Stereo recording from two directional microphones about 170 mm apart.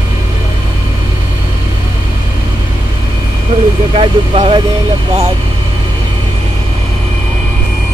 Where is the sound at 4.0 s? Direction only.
35° right (ahead or behind).